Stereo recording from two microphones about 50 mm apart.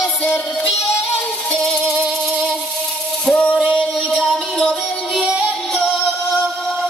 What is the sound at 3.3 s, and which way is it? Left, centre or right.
Music, left.